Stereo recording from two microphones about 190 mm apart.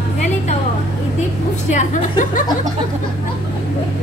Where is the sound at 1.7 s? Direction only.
40° left (ahead or behind).